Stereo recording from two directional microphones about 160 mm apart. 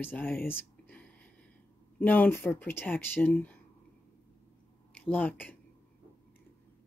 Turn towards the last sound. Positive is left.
turn(degrees=10)  # may be behind; listen again after turning